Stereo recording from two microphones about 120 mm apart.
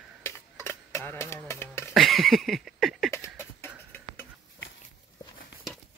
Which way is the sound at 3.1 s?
25° left (ahead or behind).